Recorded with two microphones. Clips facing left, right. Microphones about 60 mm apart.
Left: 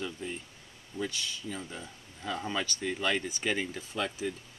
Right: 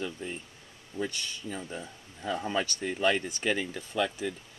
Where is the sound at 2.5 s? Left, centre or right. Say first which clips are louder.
Right 2 dB; right.